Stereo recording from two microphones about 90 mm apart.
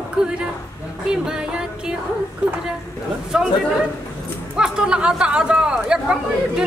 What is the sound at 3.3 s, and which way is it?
Speech, 10° right (ahead or behind).